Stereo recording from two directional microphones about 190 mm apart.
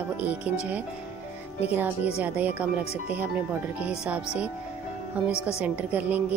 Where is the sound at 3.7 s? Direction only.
5° right (ahead or behind).